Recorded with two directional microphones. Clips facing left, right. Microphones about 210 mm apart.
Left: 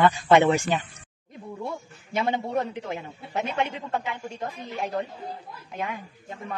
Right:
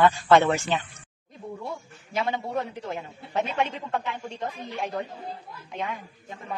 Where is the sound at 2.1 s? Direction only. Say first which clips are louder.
Left 2 dB; 20° left (ahead or behind).